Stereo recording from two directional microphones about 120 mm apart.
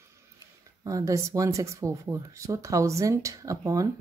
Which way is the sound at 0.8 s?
25° right (ahead or behind).